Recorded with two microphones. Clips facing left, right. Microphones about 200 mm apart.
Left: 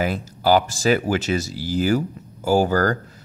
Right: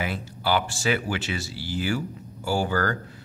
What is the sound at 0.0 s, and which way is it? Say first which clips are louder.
Speech: left 7 dB; 40° left (ahead or behind).